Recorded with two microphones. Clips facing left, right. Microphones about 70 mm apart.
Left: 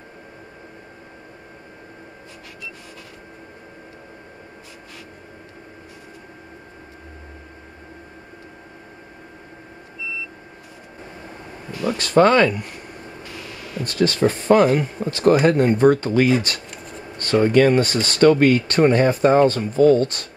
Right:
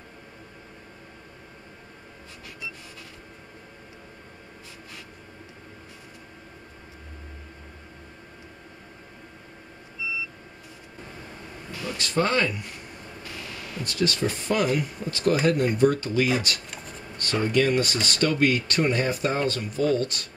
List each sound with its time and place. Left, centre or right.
11.8 s speech: left
13.8 s speech: left